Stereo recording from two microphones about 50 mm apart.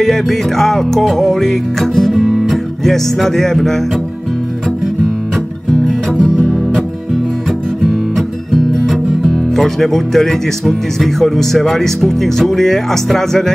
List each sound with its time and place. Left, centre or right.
0.0 s music: centre
6.1 s music: centre
9.2 s speech: centre